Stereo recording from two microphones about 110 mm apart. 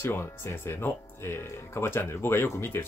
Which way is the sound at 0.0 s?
20° left (ahead or behind).